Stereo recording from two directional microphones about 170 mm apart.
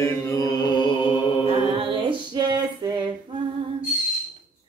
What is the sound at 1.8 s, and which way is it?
Female singing, 30° right (ahead or behind).